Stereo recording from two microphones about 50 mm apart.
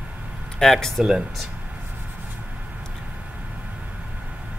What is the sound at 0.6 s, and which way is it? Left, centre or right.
Speech, centre.